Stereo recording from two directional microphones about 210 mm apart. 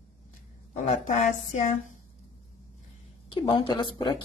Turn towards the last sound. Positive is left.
turn(degrees=25)  # may be behind; listen again after turning